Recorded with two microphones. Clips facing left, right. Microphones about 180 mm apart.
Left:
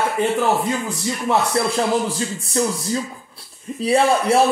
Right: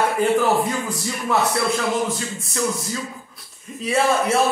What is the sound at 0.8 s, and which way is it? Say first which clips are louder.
Speech: left 3 dB; 30° left (ahead or behind).